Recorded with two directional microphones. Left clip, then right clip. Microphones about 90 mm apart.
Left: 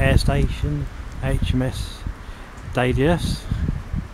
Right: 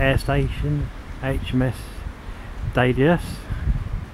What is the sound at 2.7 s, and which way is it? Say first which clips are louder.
Speech: right 1 dB; 15° left (ahead or behind).